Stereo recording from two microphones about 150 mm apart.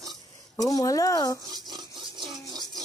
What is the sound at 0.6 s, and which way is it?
Speech, 25° left (ahead or behind).